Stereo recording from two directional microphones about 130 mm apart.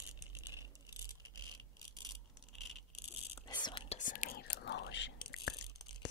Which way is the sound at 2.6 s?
Centre (ahead or behind).